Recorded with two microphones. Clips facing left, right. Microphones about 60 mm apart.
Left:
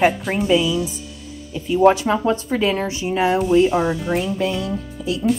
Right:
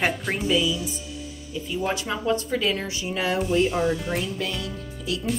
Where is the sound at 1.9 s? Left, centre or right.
Left.